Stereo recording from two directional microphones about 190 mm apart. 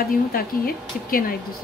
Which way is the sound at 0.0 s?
50° left (ahead or behind).